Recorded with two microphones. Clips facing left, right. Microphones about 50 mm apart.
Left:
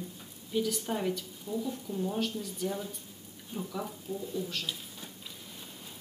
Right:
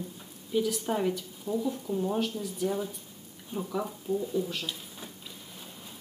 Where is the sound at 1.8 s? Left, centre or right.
Centre.